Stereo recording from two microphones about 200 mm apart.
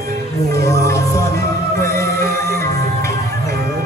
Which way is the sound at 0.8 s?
15° left (ahead or behind).